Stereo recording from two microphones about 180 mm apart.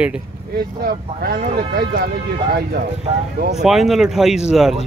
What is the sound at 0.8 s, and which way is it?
Speech, 60° right (ahead or behind).